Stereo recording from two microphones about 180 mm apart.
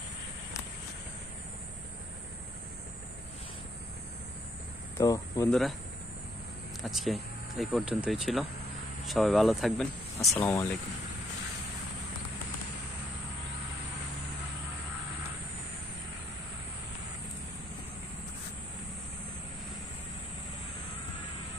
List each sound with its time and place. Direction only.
4.9 s speech: 20° left (ahead or behind)
5.5 s speech: centre (ahead or behind)
6.8 s speech: centre (ahead or behind)
10.3 s speech: 10° left (ahead or behind)